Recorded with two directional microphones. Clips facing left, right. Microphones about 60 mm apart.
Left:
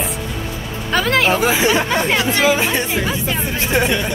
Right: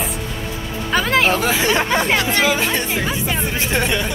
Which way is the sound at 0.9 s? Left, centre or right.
Centre.